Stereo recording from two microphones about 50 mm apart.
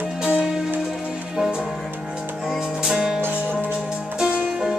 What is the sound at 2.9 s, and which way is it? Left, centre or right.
Music, centre.